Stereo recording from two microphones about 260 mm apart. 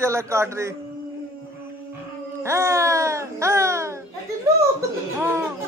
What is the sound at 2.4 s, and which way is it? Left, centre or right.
Speech, centre.